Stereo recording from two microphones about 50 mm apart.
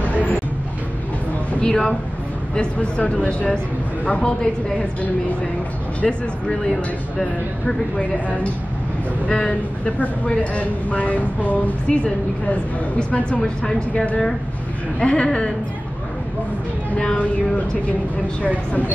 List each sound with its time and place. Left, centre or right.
0.0 s vehicle: left
1.6 s speech: centre
5.9 s speech: centre
6.7 s speech: centre
9.3 s speech: centre
9.9 s speech: left
16.9 s speech: centre